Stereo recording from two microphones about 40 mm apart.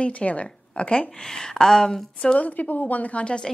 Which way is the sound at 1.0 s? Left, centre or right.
Centre.